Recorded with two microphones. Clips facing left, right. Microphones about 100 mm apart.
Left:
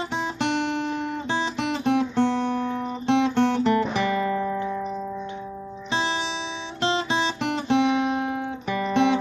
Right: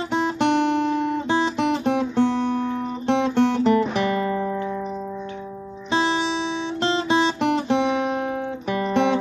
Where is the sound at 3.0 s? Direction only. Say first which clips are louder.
Right 1 dB; 5° right (ahead or behind).